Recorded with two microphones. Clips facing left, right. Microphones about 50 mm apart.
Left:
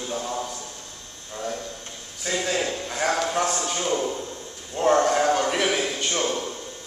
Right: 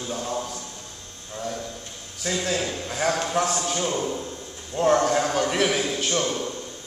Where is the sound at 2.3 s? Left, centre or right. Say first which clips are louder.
Left 1 dB; centre.